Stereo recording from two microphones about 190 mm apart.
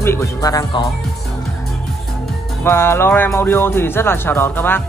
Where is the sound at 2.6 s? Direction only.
15° left (ahead or behind).